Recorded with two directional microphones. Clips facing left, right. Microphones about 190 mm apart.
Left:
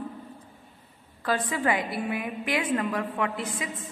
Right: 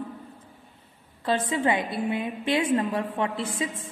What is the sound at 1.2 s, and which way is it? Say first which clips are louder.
A woman's voice: right 2 dB; 25° right (ahead or behind).